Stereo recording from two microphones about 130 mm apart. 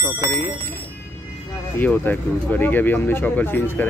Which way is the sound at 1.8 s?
15° left (ahead or behind).